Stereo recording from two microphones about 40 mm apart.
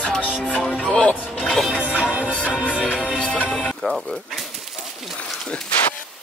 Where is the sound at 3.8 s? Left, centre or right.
Left.